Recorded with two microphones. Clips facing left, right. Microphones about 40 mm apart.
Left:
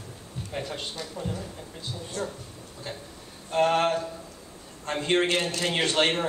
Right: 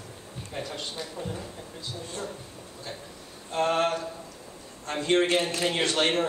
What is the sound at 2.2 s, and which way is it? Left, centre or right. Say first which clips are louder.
Speech: left 5 dB; right.